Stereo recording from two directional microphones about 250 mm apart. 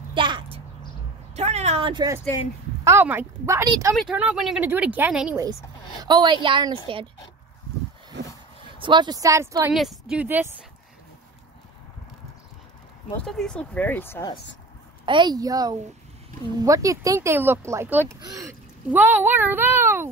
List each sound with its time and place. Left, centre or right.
0.1 s a sound: centre
2.8 s a woman's voice: centre
8.2 s a sound: right
8.7 s speech: centre
13.2 s speech: centre
15.0 s speech: centre